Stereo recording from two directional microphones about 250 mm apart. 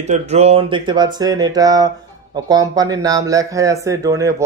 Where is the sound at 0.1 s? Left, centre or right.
Right.